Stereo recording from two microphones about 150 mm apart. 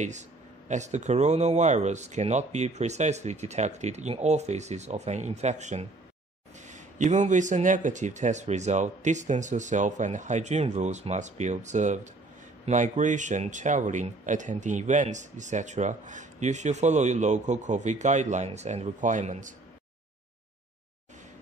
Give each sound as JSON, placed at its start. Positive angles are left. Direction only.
{"t": 0.7, "sound": "speech", "side_deg": -50}